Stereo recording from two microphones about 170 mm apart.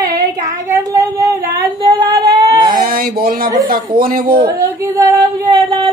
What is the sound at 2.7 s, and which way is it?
Speech, 60° right (ahead or behind).